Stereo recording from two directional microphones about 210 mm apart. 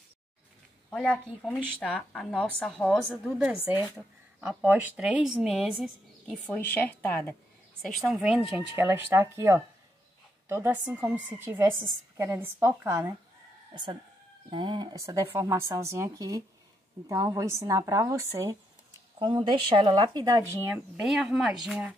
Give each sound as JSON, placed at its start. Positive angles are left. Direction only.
{"t": 0.8, "sound": "speech", "side_deg": 5}
{"t": 7.9, "sound": "speech", "side_deg": 0}
{"t": 14.5, "sound": "speech", "side_deg": -20}
{"t": 20.7, "sound": "speech", "side_deg": -5}